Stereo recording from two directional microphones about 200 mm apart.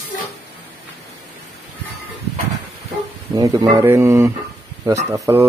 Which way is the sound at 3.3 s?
15° right (ahead or behind).